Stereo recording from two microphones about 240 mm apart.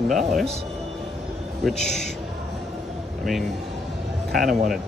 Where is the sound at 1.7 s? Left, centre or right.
Centre.